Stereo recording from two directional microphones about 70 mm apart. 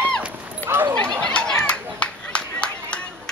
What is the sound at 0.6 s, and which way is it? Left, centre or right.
Dog, right.